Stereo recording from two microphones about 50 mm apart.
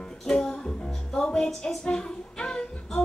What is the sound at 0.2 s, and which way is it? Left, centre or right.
Music, centre.